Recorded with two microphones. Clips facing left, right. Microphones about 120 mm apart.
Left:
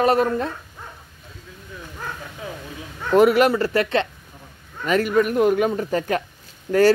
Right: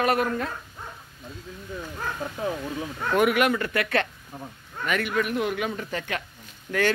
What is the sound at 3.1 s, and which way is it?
Speech, 30° left (ahead or behind).